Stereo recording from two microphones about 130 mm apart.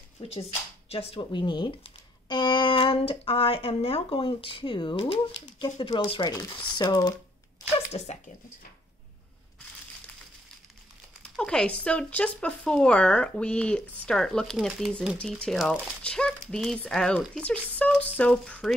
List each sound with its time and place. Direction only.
0.3 s speech: 50° left (ahead or behind); by 7.2 s 35° left (ahead or behind)
11.3 s speech: 5° left (ahead or behind)